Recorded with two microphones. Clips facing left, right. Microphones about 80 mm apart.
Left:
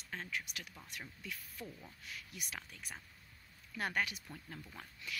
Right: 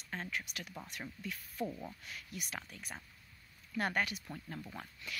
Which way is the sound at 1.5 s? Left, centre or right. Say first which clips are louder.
Right 10 dB; right.